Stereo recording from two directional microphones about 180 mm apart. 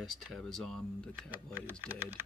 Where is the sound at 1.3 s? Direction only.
10° right (ahead or behind).